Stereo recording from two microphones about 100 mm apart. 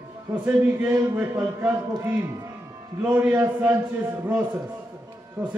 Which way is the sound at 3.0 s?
20° right (ahead or behind).